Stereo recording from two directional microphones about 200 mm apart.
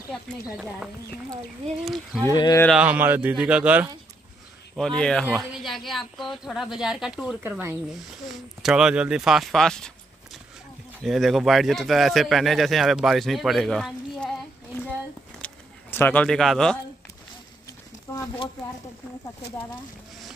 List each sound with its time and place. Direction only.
0.1 s speech: centre (ahead or behind)
2.2 s speech: 20° left (ahead or behind)
2.6 s speech: 5° right (ahead or behind)
4.7 s speech: 5° left (ahead or behind)
11.0 s speech: centre (ahead or behind)
15.4 s a sound: 10° left (ahead or behind)